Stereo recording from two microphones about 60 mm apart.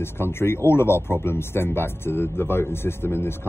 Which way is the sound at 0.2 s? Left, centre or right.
Left.